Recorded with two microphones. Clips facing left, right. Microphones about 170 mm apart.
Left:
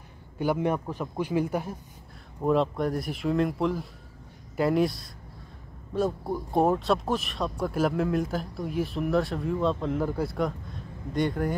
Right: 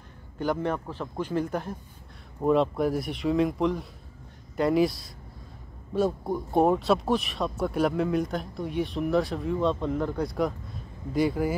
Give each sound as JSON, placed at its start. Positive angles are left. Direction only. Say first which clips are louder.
{"t": 0.4, "sound": "a man's voice", "louder": "left 2 dB", "side_deg": 10}